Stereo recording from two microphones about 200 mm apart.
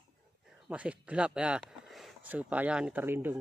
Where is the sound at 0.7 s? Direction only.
5° right (ahead or behind).